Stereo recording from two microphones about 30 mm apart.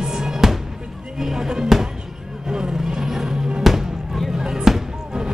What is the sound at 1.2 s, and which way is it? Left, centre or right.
Speech, centre.